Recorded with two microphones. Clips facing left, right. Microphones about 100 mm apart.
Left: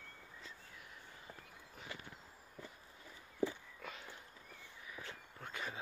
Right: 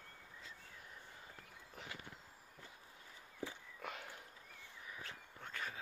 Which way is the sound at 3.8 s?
55° right (ahead or behind).